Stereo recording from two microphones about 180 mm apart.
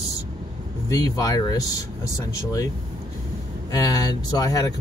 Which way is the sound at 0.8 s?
20° left (ahead or behind).